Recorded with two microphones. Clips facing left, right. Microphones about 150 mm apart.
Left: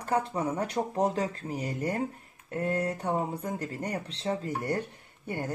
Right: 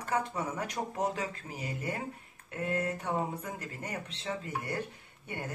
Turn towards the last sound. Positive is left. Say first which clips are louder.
# left 6 dB
turn(degrees=30)  # may be behind; listen again after turning